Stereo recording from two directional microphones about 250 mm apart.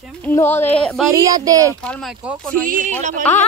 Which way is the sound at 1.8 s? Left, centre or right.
Centre.